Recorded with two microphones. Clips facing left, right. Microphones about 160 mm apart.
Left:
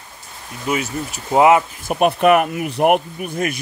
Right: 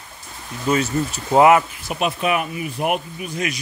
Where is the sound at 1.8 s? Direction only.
50° left (ahead or behind).